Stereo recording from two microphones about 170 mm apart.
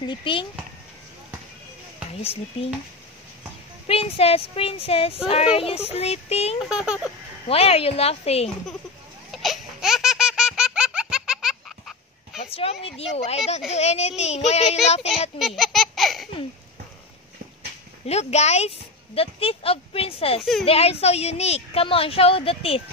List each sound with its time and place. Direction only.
0.0 s speech: 30° left (ahead or behind)
3.8 s a woman's voice: 35° left (ahead or behind)
6.6 s speech: 5° right (ahead or behind)
7.4 s a woman's voice: 35° left (ahead or behind)
9.3 s baby laughter: centre (ahead or behind)
12.4 s a sound: 35° left (ahead or behind)
12.8 s a woman's voice: 35° left (ahead or behind)
15.3 s a sound: centre (ahead or behind)
18.0 s a woman's voice: 40° left (ahead or behind)